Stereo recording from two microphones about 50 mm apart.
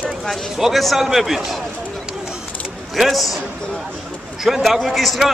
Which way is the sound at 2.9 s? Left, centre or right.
Centre.